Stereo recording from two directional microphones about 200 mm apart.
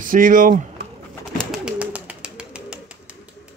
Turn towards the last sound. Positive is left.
turn(degrees=-5)  # may be behind; listen again after turning